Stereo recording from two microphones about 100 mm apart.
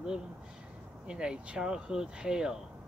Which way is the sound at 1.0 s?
10° right (ahead or behind).